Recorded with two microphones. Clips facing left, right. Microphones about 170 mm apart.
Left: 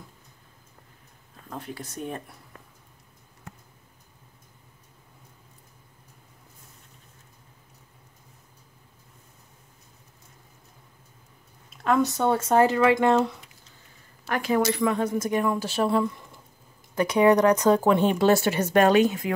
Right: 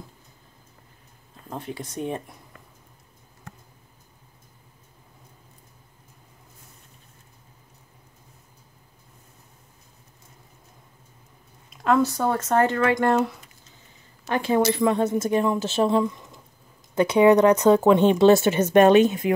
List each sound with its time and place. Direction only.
1.5 s speech: 25° right (ahead or behind)
12.2 s speech: centre (ahead or behind)
14.2 s speech: 25° right (ahead or behind)